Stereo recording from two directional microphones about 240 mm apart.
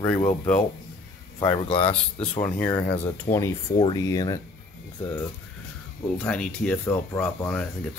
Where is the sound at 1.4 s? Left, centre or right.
Centre.